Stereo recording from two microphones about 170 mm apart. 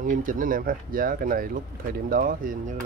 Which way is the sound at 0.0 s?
50° right (ahead or behind).